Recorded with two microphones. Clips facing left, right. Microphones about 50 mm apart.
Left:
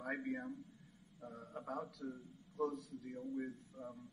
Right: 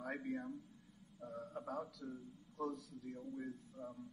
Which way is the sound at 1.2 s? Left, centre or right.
Centre.